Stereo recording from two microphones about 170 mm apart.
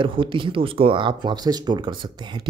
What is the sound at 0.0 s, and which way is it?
A man's voice, 30° right (ahead or behind).